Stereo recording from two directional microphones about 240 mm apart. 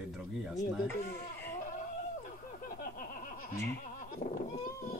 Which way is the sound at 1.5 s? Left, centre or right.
Left.